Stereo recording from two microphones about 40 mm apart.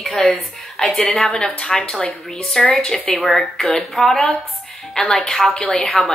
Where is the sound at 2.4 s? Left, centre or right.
Centre.